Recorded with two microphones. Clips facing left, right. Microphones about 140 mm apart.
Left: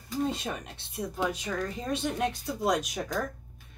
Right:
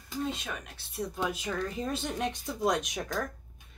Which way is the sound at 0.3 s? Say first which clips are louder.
Left 4 dB; 35° left (ahead or behind).